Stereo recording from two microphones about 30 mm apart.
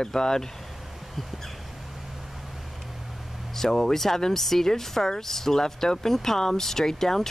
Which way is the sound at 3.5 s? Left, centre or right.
Centre.